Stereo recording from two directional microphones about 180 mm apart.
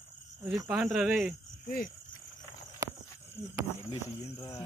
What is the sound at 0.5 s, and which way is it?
Speech, 10° right (ahead or behind).